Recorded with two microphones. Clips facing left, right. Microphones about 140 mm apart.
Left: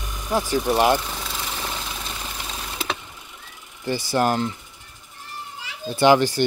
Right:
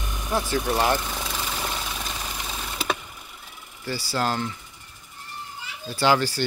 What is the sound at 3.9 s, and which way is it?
Speech, 20° left (ahead or behind).